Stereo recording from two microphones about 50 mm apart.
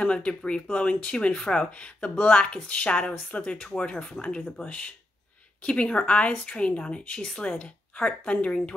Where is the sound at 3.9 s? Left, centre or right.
Centre.